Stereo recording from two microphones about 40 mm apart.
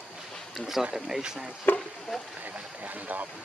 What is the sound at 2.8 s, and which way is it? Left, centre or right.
Speech, right.